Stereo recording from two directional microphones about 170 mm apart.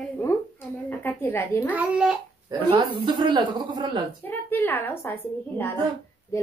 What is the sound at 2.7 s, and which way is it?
Speech, 30° right (ahead or behind).